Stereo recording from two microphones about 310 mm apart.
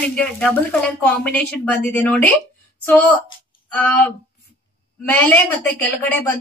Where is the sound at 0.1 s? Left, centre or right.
Centre.